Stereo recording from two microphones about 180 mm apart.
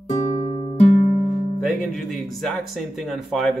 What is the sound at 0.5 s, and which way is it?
Music, 30° left (ahead or behind).